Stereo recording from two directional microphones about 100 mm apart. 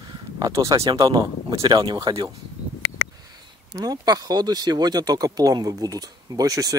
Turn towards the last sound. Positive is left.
turn(degrees=-35)  # may be behind; listen again after turning